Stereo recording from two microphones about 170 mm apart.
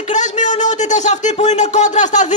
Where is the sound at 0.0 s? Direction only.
45° left (ahead or behind).